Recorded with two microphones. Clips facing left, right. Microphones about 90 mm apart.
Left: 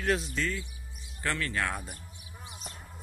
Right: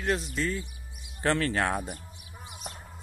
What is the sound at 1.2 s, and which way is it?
Speech, 40° right (ahead or behind).